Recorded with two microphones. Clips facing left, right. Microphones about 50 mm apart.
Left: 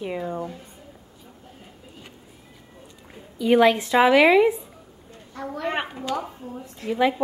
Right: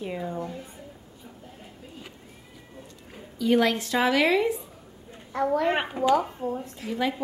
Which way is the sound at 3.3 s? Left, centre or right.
Left.